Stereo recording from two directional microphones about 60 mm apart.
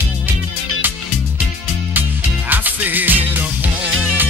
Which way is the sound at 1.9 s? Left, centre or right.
Right.